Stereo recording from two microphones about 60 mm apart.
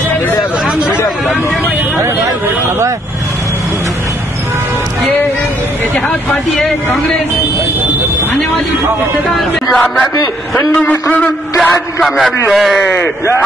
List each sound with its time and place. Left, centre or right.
9.3 s music: centre
10.7 s a man's voice: left
11.5 s a man's voice: centre